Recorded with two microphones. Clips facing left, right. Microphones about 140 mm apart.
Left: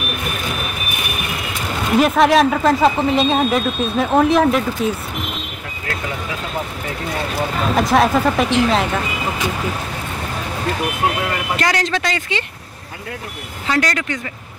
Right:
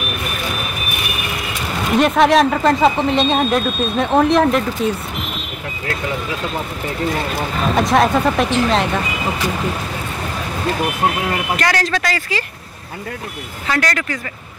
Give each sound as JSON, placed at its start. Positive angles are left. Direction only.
{"t": 1.9, "sound": "speech", "side_deg": 0}
{"t": 7.7, "sound": "speech", "side_deg": 0}
{"t": 11.5, "sound": "speech", "side_deg": 25}
{"t": 13.7, "sound": "speech", "side_deg": 20}